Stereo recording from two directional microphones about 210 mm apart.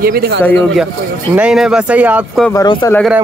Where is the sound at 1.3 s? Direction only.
5° right (ahead or behind).